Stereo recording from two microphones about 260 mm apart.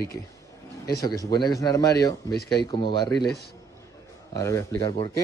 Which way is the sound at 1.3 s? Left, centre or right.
Centre.